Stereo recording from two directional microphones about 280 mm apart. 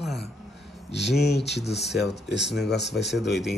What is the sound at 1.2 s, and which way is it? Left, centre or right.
Speech, left.